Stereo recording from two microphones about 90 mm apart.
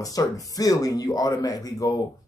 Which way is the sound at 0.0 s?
40° left (ahead or behind).